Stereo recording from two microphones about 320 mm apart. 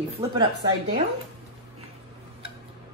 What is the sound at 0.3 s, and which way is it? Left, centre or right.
Speech, centre.